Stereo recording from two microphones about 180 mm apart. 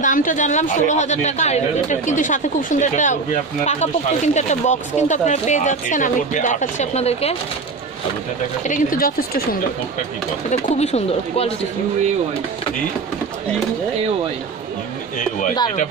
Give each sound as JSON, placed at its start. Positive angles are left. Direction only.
{"t": 0.0, "sound": "speech", "side_deg": 45}
{"t": 8.6, "sound": "speech", "side_deg": 50}
{"t": 10.5, "sound": "speech", "side_deg": 35}